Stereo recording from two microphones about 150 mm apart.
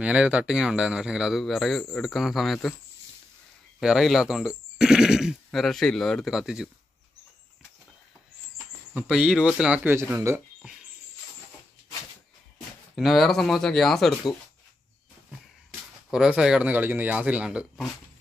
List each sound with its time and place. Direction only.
0.0 s speech: 10° right (ahead or behind)
3.8 s speech: centre (ahead or behind)
8.9 s speech: 5° right (ahead or behind)
12.9 s speech: centre (ahead or behind)
16.1 s speech: 5° right (ahead or behind)